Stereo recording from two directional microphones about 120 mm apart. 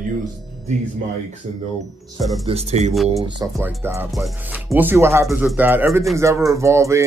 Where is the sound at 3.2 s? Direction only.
40° right (ahead or behind).